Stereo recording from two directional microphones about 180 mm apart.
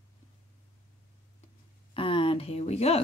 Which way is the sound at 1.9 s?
30° left (ahead or behind).